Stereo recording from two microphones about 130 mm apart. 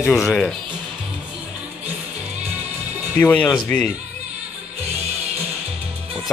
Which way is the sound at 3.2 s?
10° left (ahead or behind).